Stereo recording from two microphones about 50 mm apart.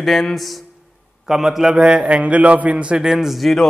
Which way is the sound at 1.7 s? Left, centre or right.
Centre.